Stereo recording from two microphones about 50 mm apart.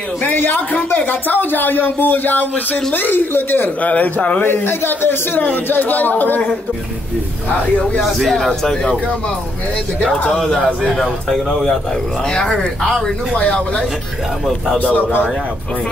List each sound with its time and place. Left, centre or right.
0.2 s speech: left
3.8 s speech: left
4.4 s speech: left
8.0 s speech: centre
11.0 s a man's voice: centre
14.8 s speech: left